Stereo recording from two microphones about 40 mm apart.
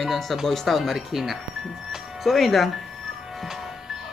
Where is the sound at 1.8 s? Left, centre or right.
Centre.